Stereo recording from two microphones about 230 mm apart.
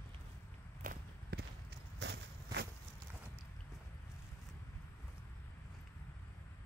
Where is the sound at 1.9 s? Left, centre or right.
Right.